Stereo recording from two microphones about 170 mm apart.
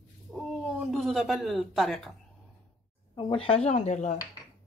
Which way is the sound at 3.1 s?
30° left (ahead or behind).